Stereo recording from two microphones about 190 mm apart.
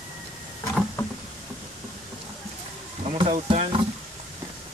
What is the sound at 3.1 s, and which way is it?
Speech, 25° right (ahead or behind).